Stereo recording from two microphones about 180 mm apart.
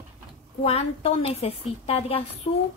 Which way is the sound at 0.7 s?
35° left (ahead or behind).